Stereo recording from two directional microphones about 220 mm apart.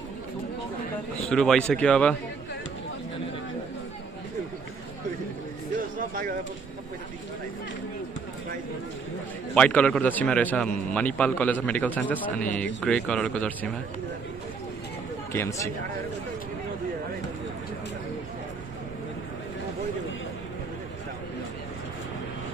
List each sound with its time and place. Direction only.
1.2 s a man's voice: centre (ahead or behind)
5.8 s a sound: 40° right (ahead or behind)
9.5 s a man's voice: 5° left (ahead or behind)
15.3 s a man's voice: 10° left (ahead or behind)